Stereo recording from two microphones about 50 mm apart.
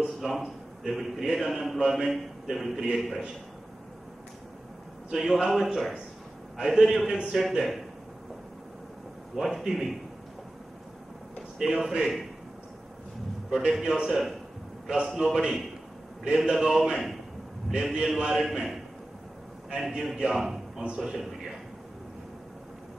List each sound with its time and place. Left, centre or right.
0.2 s a man's voice: centre
5.1 s a man's voice: centre
7.1 s a man's voice: centre
7.3 s a man's voice: centre
9.3 s a man's voice: centre
11.5 s a man's voice: centre
13.5 s a man's voice: centre
19.8 s a man's voice: centre